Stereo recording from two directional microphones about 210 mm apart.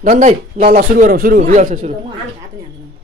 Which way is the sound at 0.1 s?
35° right (ahead or behind).